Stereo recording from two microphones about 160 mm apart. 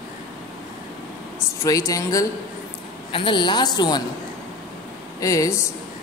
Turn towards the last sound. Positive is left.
turn(degrees=20)  # may be behind; listen again after turning